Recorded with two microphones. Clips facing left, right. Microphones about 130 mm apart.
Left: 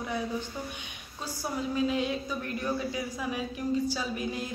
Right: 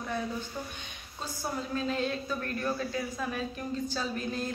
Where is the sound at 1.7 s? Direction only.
10° left (ahead or behind).